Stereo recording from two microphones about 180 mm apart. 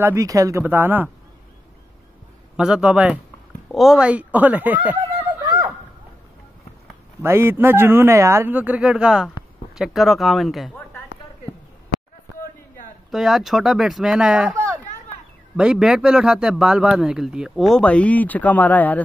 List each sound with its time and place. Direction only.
0.0 s speech: 15° right (ahead or behind)
2.5 s speech: 5° right (ahead or behind)
7.2 s speech: 15° right (ahead or behind)
13.1 s speech: centre (ahead or behind)
14.5 s chatter: 15° right (ahead or behind)
15.5 s speech: 5° right (ahead or behind)